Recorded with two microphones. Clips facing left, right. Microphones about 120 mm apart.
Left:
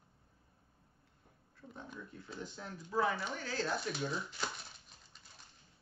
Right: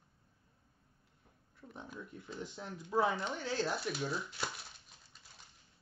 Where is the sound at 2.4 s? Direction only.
15° right (ahead or behind).